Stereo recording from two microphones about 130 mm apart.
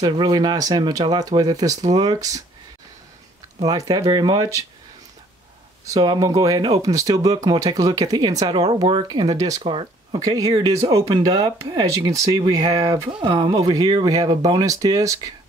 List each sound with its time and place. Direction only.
0.0 s speech: 30° right (ahead or behind)
3.6 s speech: 30° right (ahead or behind)
5.9 s speech: 30° right (ahead or behind)